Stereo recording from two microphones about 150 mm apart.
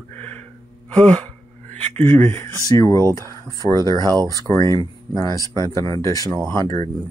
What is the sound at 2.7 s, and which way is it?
Speech, 20° left (ahead or behind).